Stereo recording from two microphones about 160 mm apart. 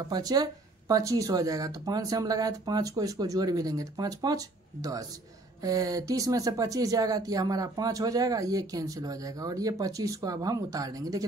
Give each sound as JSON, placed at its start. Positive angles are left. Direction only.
{"t": 0.1, "sound": "speech", "side_deg": -25}
{"t": 5.6, "sound": "speech", "side_deg": -20}